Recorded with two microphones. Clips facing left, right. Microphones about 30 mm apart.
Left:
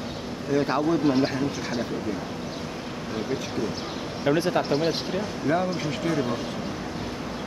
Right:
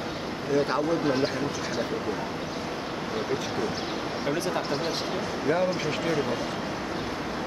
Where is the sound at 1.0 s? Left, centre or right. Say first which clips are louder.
Left 3 dB; centre.